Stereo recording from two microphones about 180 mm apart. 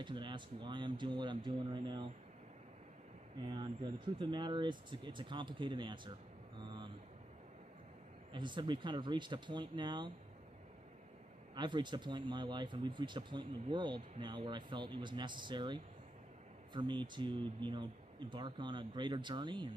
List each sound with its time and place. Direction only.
0.0 s speech: 25° right (ahead or behind)
3.4 s speech: 25° right (ahead or behind)
6.6 s vehicle: 25° right (ahead or behind)
8.3 s speech: 25° right (ahead or behind)
11.5 s speech: 25° right (ahead or behind)